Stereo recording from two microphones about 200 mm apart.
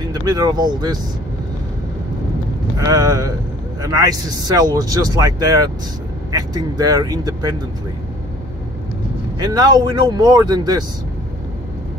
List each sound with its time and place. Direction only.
0.1 s speech: 20° right (ahead or behind)
2.8 s speech: 15° right (ahead or behind)
9.4 s speech: 20° right (ahead or behind)